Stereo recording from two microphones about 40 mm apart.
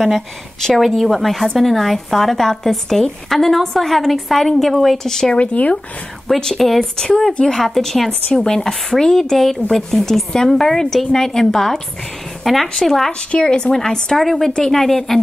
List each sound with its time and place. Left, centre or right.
0.7 s a woman's voice: centre
5.3 s speech: left
6.2 s a woman's voice: centre
8.4 s speech: centre
12.4 s speech: centre
13.3 s speech: left
13.7 s speech: centre